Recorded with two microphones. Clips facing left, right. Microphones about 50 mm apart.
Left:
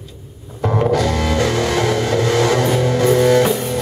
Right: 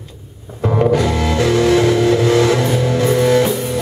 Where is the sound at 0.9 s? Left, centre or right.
Centre.